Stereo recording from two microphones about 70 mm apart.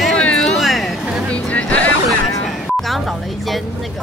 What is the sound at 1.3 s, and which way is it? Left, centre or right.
Music, centre.